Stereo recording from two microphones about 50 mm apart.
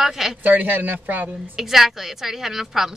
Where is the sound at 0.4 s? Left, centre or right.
Right.